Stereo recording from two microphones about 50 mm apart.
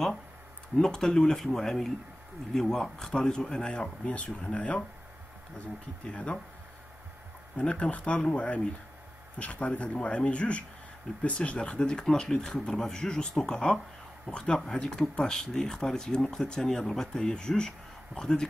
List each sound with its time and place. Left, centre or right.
0.7 s speech: centre
7.5 s speech: left
12.0 s speech: centre